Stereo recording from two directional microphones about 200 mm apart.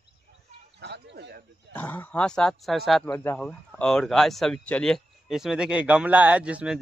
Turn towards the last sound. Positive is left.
turn(degrees=-5)  # may be behind; listen again after turning